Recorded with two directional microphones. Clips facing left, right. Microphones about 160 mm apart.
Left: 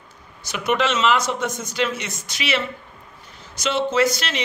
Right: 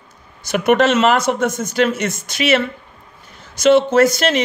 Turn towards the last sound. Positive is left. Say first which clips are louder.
# right 7 dB
turn(degrees=-50)  # may be behind; listen again after turning